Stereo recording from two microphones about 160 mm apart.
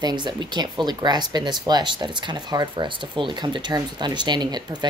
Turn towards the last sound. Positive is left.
turn(degrees=-25)  # may be behind; listen again after turning